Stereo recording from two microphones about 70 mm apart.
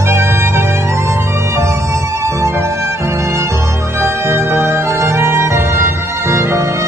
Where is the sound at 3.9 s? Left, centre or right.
Right.